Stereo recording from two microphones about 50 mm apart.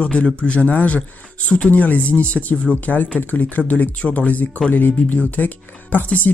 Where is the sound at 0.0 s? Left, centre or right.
Left.